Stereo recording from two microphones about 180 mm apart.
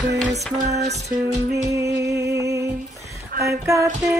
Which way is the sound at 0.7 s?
40° right (ahead or behind).